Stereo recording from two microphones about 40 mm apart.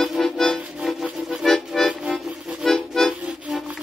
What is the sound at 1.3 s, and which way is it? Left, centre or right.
Accordion, centre.